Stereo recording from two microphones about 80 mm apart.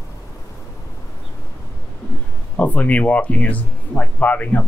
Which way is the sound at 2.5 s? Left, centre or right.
Centre.